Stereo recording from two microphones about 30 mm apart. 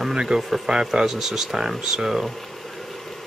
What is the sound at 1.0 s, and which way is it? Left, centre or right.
Speech, centre.